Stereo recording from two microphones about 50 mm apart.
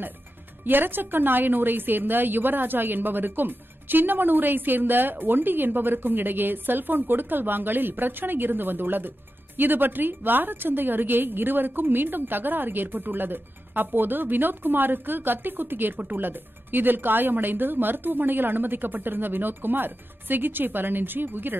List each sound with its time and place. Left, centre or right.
0.7 s a woman's voice: right